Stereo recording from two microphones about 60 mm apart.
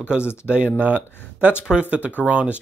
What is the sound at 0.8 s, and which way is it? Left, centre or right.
Speech, right.